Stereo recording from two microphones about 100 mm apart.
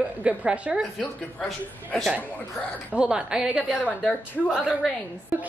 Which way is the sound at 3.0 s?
10° right (ahead or behind).